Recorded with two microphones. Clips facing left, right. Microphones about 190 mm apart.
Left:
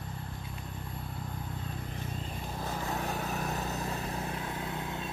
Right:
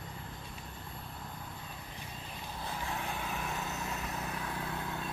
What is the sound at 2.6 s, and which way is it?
Vehicle, 40° left (ahead or behind).